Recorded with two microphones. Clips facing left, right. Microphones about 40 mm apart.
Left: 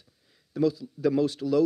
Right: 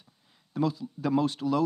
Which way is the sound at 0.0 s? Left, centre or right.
Right.